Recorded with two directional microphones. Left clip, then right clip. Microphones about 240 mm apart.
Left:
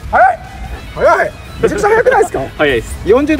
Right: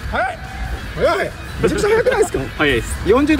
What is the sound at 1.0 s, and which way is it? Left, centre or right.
Speech, centre.